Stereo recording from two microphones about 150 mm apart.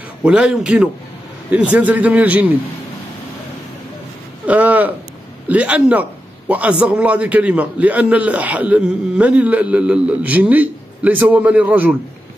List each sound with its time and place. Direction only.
0.2 s a man's voice: 5° right (ahead or behind)
4.5 s a man's voice: 10° right (ahead or behind)